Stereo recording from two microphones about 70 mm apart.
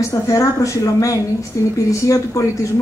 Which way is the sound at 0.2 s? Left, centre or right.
Left.